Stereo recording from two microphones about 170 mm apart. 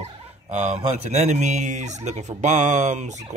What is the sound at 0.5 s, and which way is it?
Turkey, 45° right (ahead or behind).